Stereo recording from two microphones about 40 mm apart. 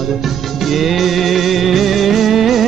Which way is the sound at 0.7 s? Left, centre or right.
Centre.